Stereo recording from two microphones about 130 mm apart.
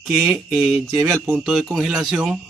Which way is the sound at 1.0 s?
20° right (ahead or behind).